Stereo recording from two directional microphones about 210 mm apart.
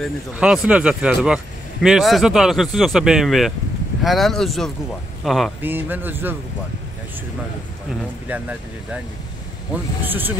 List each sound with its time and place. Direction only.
0.0 s speech: 5° right (ahead or behind)
8.3 s speech: 5° right (ahead or behind)
10.0 s speech: 10° right (ahead or behind)